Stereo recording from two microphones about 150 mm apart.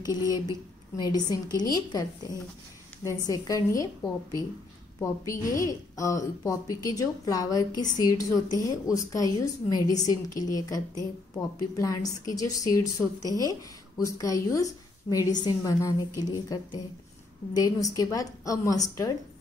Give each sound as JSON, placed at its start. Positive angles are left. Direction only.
{"t": 0.0, "sound": "a woman's voice", "side_deg": 25}